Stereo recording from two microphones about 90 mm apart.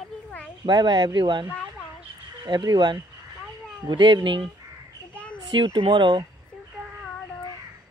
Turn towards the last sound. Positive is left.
turn(degrees=-65)  # may be behind; listen again after turning